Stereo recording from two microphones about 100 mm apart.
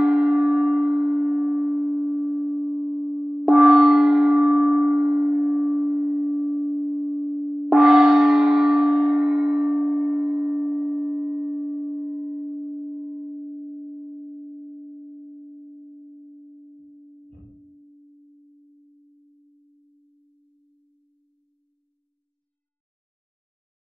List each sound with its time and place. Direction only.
0.0 s music: 5° right (ahead or behind)
2.3 s sine wave: centre (ahead or behind)
2.6 s gong: 5° right (ahead or behind)
5.9 s a sound: 15° right (ahead or behind)
6.4 s singing bowl: 5° right (ahead or behind)
6.8 s tuning fork: 15° right (ahead or behind)
7.7 s gong: centre (ahead or behind)
10.8 s sine wave: 5° left (ahead or behind)
11.1 s singing bowl: 15° right (ahead or behind)
12.0 s tuning fork: 15° right (ahead or behind)
14.4 s sine wave: 5° left (ahead or behind)